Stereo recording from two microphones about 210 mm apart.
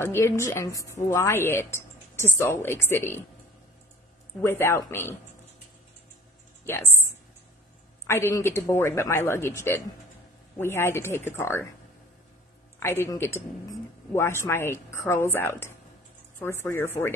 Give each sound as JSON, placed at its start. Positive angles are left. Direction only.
{"t": 0.0, "sound": "a woman's voice", "side_deg": 10}
{"t": 4.4, "sound": "a woman's voice", "side_deg": 10}
{"t": 6.6, "sound": "speech", "side_deg": 10}
{"t": 8.1, "sound": "a woman's voice", "side_deg": 15}
{"t": 12.7, "sound": "a woman's voice", "side_deg": 10}